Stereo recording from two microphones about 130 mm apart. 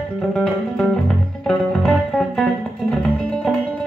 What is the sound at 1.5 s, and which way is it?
Music, 5° left (ahead or behind).